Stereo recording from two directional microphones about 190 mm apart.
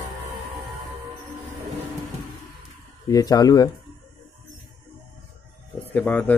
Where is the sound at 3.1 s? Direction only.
20° left (ahead or behind).